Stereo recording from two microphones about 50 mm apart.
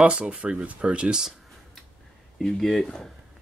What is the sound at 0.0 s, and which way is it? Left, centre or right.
Speech, right.